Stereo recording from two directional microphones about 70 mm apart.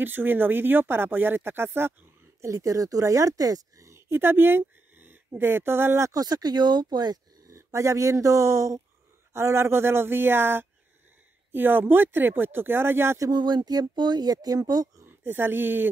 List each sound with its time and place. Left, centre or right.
0.0 s speech: right
2.4 s a woman's voice: right
6.1 s speech: right
7.4 s speech: right
13.3 s speech: right
15.0 s speech: right